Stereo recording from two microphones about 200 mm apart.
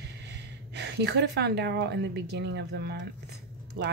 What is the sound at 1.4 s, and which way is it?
Speech, 55° right (ahead or behind).